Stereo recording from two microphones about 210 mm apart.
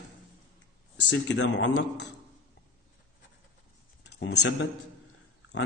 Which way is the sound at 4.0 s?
55° left (ahead or behind).